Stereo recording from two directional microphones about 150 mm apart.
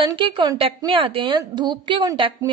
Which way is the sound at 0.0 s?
35° right (ahead or behind).